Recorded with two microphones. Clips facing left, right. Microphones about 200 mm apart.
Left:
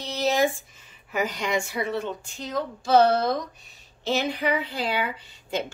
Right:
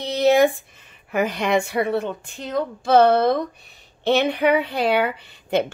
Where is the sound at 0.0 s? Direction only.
60° right (ahead or behind).